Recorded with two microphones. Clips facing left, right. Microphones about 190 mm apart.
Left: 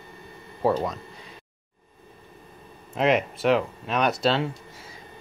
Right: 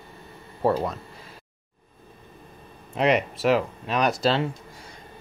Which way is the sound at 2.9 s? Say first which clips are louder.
Even; centre (ahead or behind).